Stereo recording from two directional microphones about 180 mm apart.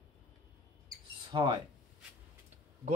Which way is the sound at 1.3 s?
25° right (ahead or behind).